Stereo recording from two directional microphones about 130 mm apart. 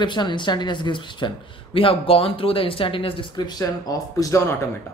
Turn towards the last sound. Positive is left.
turn(degrees=25)  # may be behind; listen again after turning